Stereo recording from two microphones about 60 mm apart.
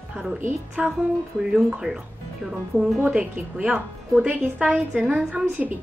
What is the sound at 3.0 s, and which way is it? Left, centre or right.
A woman's voice, centre.